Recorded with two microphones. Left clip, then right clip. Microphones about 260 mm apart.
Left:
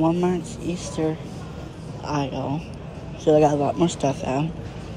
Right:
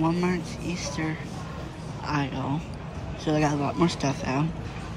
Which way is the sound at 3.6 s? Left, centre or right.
Right.